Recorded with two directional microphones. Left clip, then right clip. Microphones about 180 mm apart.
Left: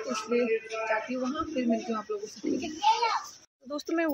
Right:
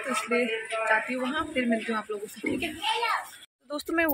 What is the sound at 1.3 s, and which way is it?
Speech, 5° left (ahead or behind).